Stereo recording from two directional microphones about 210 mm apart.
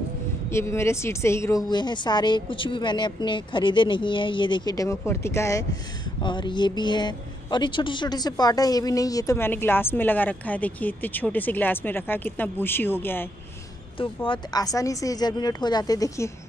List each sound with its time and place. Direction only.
0.5 s a woman's voice: 10° left (ahead or behind)
13.9 s a woman's voice: 25° left (ahead or behind)